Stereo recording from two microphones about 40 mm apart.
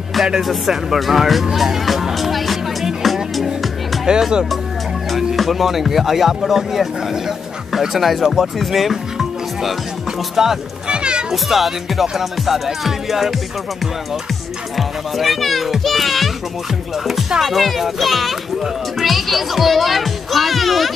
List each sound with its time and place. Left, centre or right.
0.4 s speech: centre
0.9 s music: centre
4.0 s speech: centre
5.1 s speech: centre
10.3 s speech: centre
10.9 s music: right
11.3 s speech: centre
14.8 s speech: centre
17.4 s speech: centre